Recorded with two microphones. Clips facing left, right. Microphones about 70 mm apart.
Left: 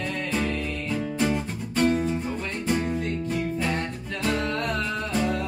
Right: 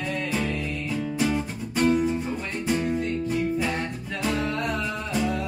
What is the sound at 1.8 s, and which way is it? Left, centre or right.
Music, centre.